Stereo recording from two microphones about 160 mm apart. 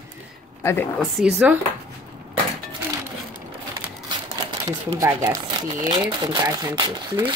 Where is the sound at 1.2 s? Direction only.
5° right (ahead or behind).